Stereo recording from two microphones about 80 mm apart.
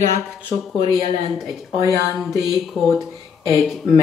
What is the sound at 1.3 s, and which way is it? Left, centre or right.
Speech, centre.